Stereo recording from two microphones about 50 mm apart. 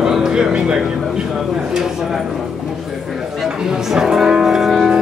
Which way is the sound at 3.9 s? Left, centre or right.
Centre.